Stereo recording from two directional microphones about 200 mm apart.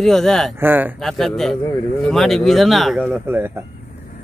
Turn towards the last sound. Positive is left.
turn(degrees=-10)  # may be behind; listen again after turning